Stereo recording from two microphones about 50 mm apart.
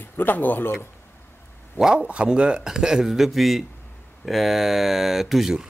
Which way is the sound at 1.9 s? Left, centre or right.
Right.